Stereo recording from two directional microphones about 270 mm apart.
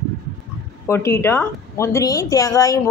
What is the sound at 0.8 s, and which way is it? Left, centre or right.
Speech, centre.